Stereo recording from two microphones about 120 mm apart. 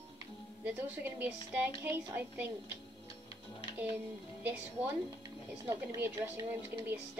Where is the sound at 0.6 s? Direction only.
10° right (ahead or behind).